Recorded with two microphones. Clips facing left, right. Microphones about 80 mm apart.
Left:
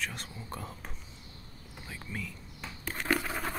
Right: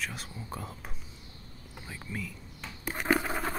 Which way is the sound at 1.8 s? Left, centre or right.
Centre.